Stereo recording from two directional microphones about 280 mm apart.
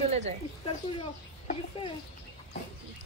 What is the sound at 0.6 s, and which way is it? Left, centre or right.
Speech, centre.